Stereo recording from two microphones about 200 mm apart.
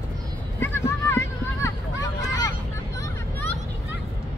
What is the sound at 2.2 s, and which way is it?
Vehicle, 20° left (ahead or behind).